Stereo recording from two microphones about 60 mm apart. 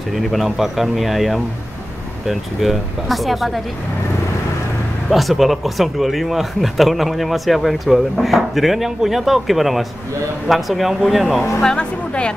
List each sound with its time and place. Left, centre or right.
0.1 s speech: centre
5.1 s speech: centre
11.6 s speech: centre